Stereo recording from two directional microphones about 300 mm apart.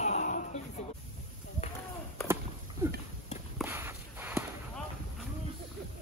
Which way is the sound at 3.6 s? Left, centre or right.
Centre.